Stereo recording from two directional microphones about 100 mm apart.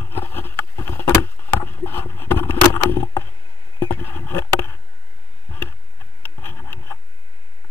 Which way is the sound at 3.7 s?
20° left (ahead or behind).